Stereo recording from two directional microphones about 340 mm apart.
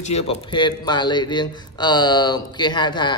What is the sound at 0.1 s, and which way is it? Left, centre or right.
A man's voice, centre.